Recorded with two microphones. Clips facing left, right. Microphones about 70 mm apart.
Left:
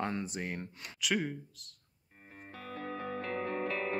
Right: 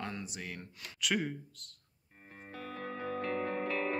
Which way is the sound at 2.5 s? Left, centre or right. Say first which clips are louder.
Even; centre.